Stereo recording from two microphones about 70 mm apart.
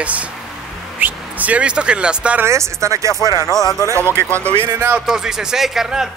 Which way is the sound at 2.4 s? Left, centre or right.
Right.